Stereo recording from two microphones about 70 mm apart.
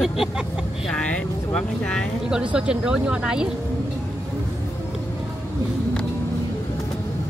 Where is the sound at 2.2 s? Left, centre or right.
Centre.